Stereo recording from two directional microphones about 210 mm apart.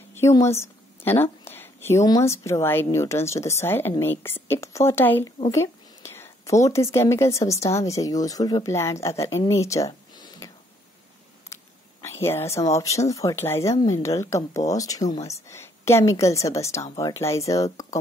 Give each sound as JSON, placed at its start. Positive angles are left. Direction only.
{"t": 0.1, "sound": "a woman's voice", "side_deg": 15}
{"t": 11.5, "sound": "a woman's voice", "side_deg": 10}